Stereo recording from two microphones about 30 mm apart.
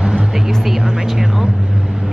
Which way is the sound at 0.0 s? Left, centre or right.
Right.